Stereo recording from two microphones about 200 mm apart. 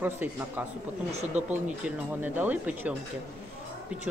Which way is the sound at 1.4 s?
35° right (ahead or behind).